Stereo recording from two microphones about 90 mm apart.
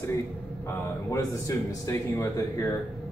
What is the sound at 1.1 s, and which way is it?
Speech, 35° left (ahead or behind).